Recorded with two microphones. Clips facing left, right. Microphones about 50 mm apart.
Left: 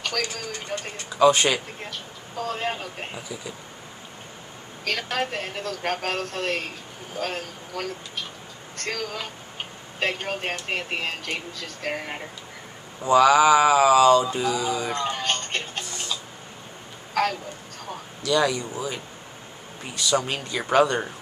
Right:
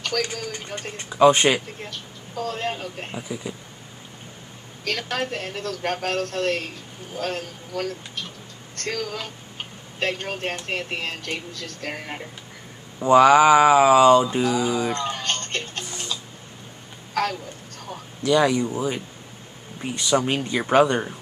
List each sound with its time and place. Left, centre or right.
0.1 s speech: centre
1.2 s speech: centre
1.8 s speech: centre
4.8 s speech: centre
13.1 s a sound: right
14.4 s music: centre
17.1 s speech: centre
18.2 s a sound: centre
20.0 s speech: centre